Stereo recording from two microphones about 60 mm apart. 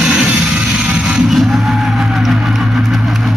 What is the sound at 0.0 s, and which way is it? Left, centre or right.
Music, centre.